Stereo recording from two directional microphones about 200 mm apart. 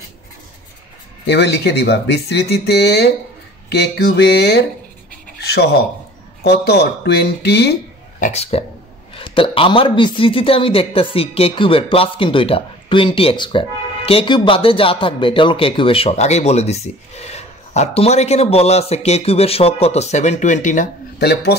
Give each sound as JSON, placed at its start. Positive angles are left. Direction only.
{"t": 1.2, "sound": "speech", "side_deg": 55}
{"t": 8.2, "sound": "speech", "side_deg": 30}
{"t": 21.2, "sound": "speech", "side_deg": 55}